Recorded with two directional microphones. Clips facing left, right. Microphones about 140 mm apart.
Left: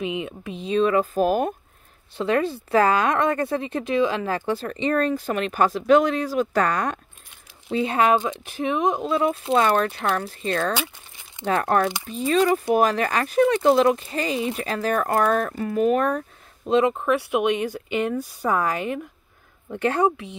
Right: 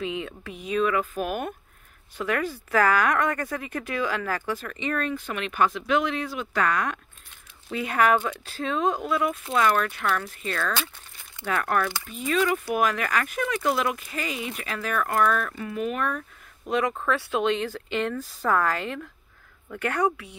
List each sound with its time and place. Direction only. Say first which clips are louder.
0.0 s speech: left 3 dB; 20° left (ahead or behind)
4.5 s speech: left 6 dB; 35° left (ahead or behind)
16.6 s speech: left 6 dB; 25° left (ahead or behind)